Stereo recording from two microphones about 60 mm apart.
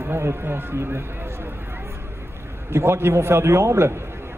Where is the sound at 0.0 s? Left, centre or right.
Right.